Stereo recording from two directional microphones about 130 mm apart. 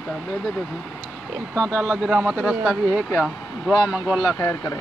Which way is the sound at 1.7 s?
5° left (ahead or behind).